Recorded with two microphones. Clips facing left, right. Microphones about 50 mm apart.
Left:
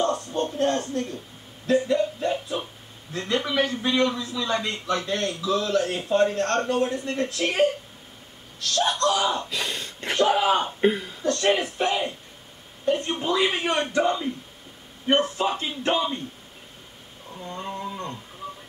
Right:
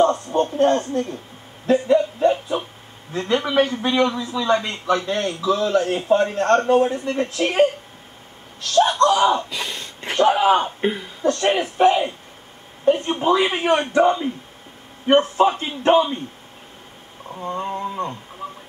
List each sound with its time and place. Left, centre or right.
0.0 s speech: right
1.7 s a sound: right
3.1 s a man's voice: right
9.5 s speech: centre
10.1 s a man's voice: right
10.6 s speech: centre
11.2 s a man's voice: right
17.5 s a man's voice: right